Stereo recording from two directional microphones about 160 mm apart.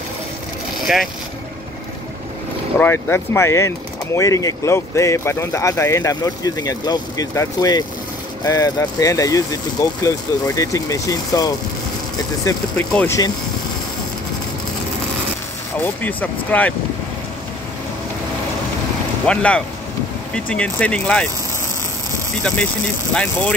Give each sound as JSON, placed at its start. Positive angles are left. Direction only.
{"t": 0.7, "sound": "vehicle", "side_deg": 0}
{"t": 2.8, "sound": "speech", "side_deg": 15}
{"t": 12.7, "sound": "speech", "side_deg": 10}
{"t": 15.8, "sound": "speech", "side_deg": 10}
{"t": 19.2, "sound": "speech", "side_deg": 5}